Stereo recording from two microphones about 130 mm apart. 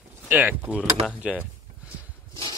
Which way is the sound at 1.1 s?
10° right (ahead or behind).